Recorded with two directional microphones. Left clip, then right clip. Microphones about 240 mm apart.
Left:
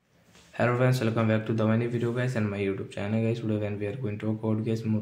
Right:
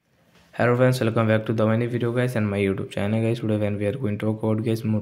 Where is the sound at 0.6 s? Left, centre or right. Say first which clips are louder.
Right 6 dB; right.